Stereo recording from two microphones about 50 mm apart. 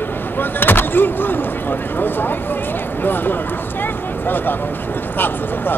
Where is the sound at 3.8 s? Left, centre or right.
Left.